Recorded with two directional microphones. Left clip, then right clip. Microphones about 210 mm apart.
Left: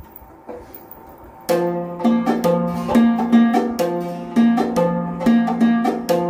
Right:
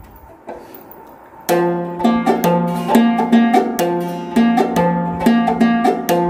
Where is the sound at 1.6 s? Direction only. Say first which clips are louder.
Right 3 dB; 50° right (ahead or behind).